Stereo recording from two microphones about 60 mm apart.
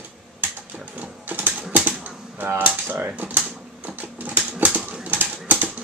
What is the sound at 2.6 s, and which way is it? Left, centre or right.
Typewriter, right.